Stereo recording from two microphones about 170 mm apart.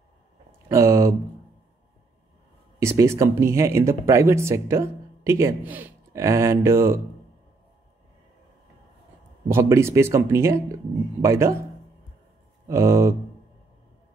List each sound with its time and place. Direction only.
0.7 s a sound: 15° right (ahead or behind)
2.8 s speech: 15° right (ahead or behind)
9.5 s speech: 15° right (ahead or behind)
12.6 s speech: 15° right (ahead or behind)